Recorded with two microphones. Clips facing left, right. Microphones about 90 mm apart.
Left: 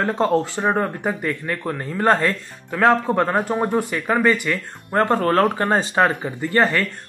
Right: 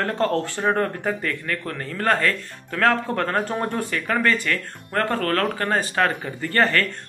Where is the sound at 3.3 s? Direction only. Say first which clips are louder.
Left 4 dB; 5° left (ahead or behind).